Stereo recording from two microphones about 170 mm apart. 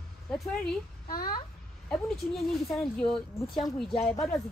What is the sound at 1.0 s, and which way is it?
Speech, 55° left (ahead or behind).